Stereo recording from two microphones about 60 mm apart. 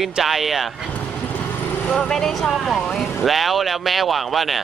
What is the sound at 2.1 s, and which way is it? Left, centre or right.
Speech, centre.